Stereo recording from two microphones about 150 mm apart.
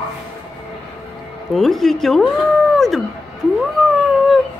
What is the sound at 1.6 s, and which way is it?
Speech, centre (ahead or behind).